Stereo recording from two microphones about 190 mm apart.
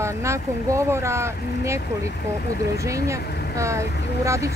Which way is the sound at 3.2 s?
55° left (ahead or behind).